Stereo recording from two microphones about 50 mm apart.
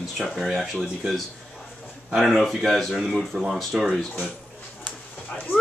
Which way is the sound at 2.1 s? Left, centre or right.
Centre.